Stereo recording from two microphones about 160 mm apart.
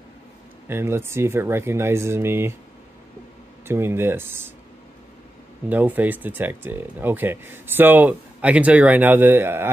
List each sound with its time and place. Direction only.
0.7 s speech: 15° right (ahead or behind)
3.6 s speech: 15° right (ahead or behind)
5.7 s speech: 10° right (ahead or behind)